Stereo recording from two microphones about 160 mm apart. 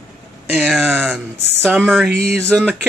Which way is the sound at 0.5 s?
Centre (ahead or behind).